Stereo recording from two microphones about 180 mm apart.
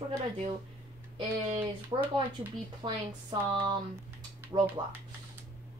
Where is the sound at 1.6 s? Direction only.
10° right (ahead or behind).